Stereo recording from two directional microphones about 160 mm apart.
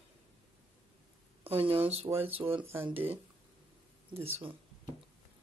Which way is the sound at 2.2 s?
35° right (ahead or behind).